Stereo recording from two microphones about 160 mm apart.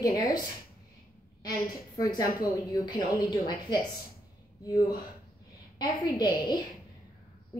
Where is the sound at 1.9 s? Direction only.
20° left (ahead or behind).